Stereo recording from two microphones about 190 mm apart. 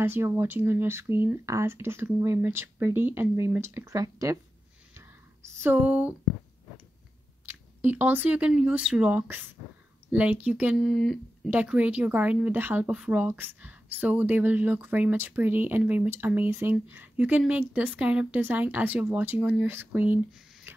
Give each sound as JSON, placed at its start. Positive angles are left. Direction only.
{"t": 0.0, "sound": "speech", "side_deg": -10}
{"t": 4.9, "sound": "a sound", "side_deg": -15}
{"t": 7.4, "sound": "speech", "side_deg": -10}